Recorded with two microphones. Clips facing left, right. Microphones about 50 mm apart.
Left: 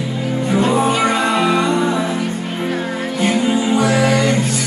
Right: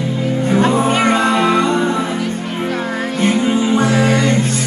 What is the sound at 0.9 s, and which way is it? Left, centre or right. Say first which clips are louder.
Music: right 2 dB; right.